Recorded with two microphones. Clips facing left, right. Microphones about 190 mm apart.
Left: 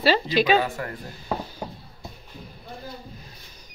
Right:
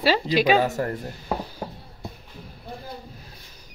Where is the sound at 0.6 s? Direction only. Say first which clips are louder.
Right 5 dB; 40° right (ahead or behind).